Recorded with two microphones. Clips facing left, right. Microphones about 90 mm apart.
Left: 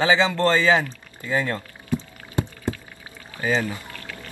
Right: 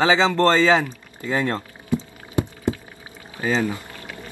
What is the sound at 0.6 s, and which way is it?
Pour, 20° right (ahead or behind).